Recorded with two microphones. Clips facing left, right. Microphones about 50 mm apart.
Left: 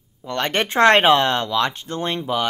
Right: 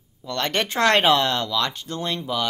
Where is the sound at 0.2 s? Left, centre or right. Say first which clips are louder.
Left 2 dB; left.